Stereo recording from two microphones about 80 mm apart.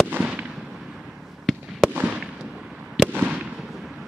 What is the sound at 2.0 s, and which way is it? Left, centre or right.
Fireworks, centre.